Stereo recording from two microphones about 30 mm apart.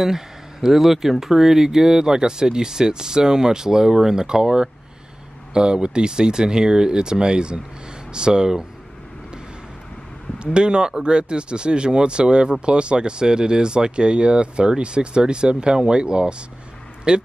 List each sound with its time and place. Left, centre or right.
0.0 s speech: centre
10.4 s speech: right